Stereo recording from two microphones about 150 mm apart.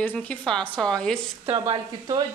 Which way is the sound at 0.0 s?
10° left (ahead or behind).